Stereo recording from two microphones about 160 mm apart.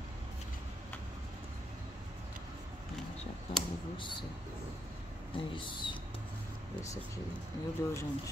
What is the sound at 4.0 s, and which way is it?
Speech, 30° left (ahead or behind).